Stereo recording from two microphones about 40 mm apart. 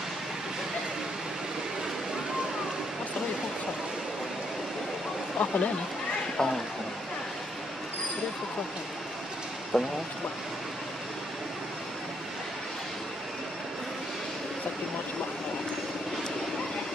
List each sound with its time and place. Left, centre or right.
5.4 s speech: left
6.3 s speech: centre
9.7 s speech: centre